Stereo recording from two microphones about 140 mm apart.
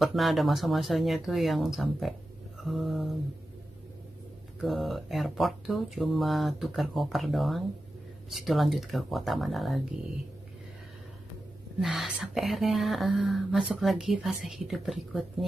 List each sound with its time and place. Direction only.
0.0 s speech: centre (ahead or behind)
4.6 s speech: centre (ahead or behind)
11.8 s speech: centre (ahead or behind)